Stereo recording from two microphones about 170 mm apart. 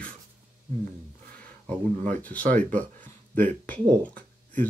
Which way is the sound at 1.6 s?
10° left (ahead or behind).